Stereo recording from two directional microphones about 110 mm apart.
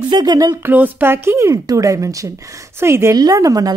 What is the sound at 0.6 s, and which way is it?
A woman's voice, 15° right (ahead or behind).